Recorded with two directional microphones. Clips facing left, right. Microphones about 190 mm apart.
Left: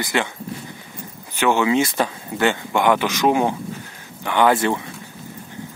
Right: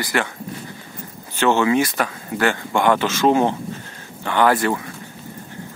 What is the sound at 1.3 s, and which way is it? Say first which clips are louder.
Speech: right 1 dB; 15° left (ahead or behind).